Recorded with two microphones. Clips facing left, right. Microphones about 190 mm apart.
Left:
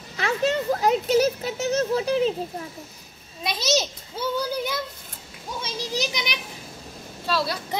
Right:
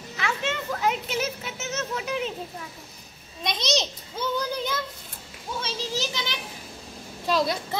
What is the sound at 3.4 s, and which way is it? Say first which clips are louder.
A child's voice: left 2 dB; 5° left (ahead or behind).